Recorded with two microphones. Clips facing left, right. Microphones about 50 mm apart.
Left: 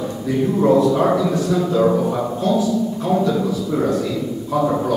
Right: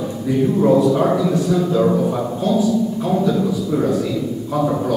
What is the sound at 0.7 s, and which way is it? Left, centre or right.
A man's voice, centre.